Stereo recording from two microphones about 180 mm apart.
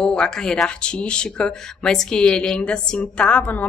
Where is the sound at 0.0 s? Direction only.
5° left (ahead or behind).